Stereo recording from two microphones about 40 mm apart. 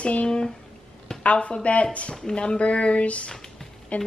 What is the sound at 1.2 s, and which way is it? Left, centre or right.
A woman's voice, left.